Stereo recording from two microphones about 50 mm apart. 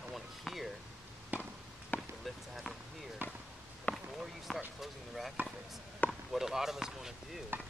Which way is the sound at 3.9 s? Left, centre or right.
Left.